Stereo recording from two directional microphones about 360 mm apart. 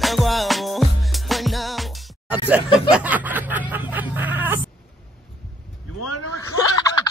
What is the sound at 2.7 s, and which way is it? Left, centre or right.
Snicker, centre.